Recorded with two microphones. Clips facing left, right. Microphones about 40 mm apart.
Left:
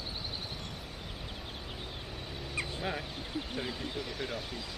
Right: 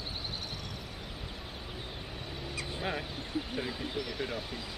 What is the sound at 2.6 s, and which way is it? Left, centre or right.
Speech, centre.